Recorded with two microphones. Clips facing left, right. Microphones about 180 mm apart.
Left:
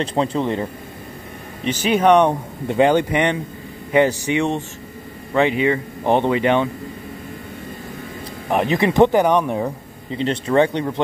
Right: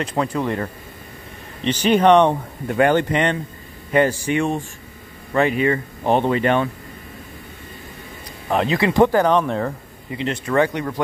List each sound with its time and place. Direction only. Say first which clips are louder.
0.0 s speech: left 2 dB; 25° left (ahead or behind)
1.6 s speech: right 1 dB; 10° left (ahead or behind)
2.7 s speech: left 1 dB; 15° left (ahead or behind)
8.5 s speech: left 1 dB; 15° left (ahead or behind)
10.1 s speech: left 3 dB; 30° left (ahead or behind)